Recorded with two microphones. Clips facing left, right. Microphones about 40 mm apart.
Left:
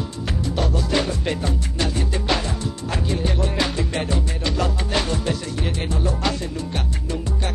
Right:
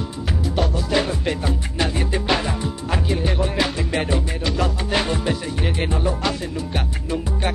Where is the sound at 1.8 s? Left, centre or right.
Centre.